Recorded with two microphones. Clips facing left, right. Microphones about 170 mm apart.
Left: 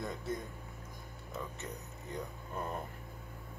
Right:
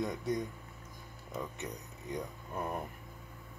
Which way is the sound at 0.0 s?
15° right (ahead or behind).